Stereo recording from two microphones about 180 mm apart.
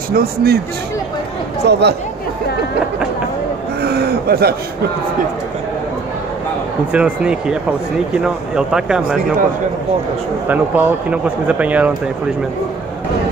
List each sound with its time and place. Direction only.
0.1 s speech: 60° right (ahead or behind)
1.6 s speech: 70° right (ahead or behind)
3.8 s a sound: 60° right (ahead or behind)
6.9 s speech: 5° right (ahead or behind)
10.5 s speech: 10° right (ahead or behind)